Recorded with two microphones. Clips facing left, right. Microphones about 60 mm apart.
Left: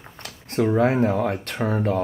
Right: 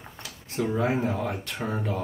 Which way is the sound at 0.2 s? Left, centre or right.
Left.